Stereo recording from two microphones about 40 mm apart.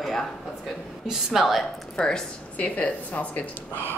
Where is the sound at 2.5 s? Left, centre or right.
Left.